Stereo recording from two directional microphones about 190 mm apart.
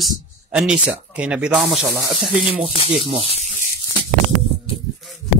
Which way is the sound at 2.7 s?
30° left (ahead or behind).